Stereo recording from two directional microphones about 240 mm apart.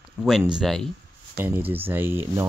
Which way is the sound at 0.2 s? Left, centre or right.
Centre.